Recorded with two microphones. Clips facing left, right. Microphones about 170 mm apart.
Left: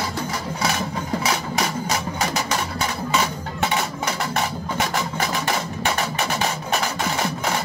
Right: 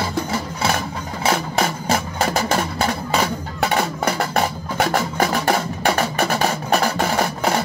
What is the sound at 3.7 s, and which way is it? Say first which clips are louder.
Music: right 4 dB; 50° right (ahead or behind).